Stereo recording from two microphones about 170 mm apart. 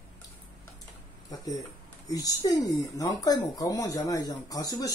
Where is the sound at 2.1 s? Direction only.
20° left (ahead or behind).